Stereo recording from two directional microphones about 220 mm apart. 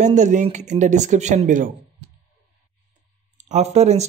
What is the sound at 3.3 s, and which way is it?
Speech, 30° right (ahead or behind).